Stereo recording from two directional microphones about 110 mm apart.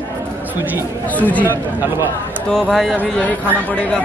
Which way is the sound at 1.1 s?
15° left (ahead or behind).